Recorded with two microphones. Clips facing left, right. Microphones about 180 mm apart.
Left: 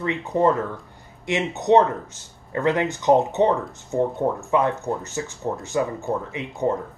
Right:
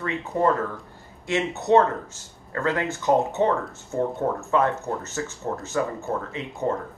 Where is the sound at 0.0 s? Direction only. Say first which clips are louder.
Left 3 dB; 20° left (ahead or behind).